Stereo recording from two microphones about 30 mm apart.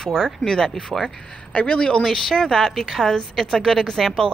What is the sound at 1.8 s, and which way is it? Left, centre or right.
Speech, left.